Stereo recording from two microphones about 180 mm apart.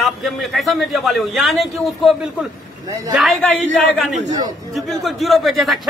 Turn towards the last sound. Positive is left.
turn(degrees=0)  # may be behind; listen again after turning